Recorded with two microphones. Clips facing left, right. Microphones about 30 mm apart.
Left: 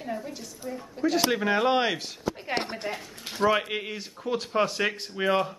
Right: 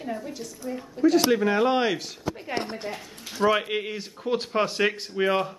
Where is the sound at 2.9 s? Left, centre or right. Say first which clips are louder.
Left 1 dB; left.